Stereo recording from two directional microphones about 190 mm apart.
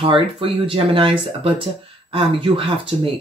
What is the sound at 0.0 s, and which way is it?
Speech, 30° right (ahead or behind).